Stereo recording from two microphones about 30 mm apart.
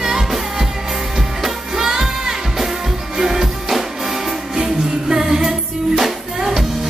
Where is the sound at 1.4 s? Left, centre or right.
Centre.